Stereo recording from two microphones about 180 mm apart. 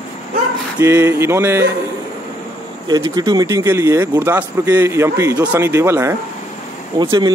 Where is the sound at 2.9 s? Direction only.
20° right (ahead or behind).